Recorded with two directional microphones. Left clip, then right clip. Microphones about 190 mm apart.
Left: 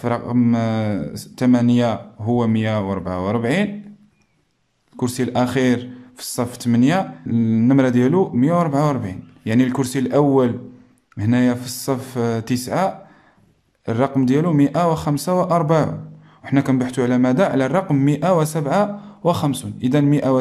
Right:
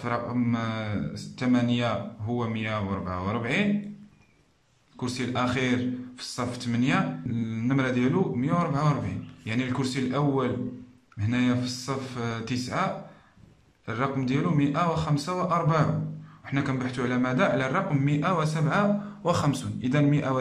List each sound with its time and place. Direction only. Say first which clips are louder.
0.0 s speech: left 8 dB; 35° left (ahead or behind)
4.9 s speech: left 9 dB; 35° left (ahead or behind)